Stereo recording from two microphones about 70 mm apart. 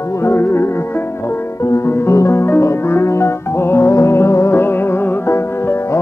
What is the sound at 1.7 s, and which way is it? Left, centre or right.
Music, left.